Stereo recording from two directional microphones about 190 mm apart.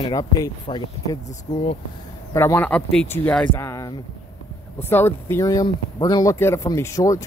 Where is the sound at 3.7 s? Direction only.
20° left (ahead or behind).